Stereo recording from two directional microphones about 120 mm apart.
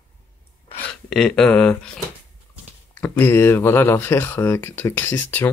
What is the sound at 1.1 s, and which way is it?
Speech, 5° left (ahead or behind).